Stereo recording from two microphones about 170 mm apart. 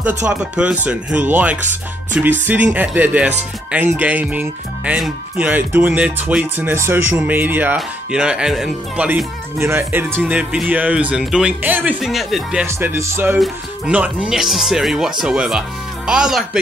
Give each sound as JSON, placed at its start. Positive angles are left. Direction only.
{"t": 0.0, "sound": "speech", "side_deg": -10}
{"t": 12.6, "sound": "speech", "side_deg": -15}